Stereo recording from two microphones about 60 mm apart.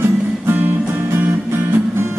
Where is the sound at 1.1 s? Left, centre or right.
Right.